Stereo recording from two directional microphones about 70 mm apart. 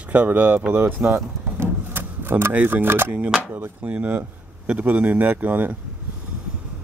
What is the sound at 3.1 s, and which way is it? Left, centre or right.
Speech, centre.